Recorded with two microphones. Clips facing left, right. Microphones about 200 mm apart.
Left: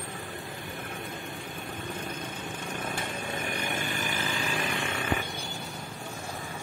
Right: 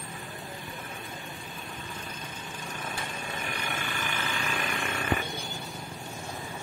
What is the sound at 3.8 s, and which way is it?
Vehicle, 40° left (ahead or behind).